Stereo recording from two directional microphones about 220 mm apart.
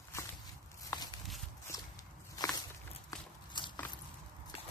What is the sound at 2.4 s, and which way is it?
Walk, 20° left (ahead or behind).